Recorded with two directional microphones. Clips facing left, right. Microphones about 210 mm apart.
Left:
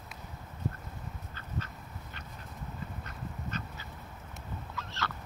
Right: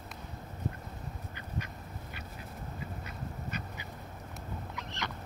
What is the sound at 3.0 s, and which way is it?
Duck, 10° right (ahead or behind).